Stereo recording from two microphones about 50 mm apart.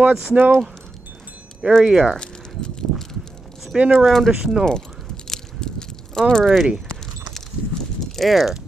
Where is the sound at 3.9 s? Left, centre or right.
Centre.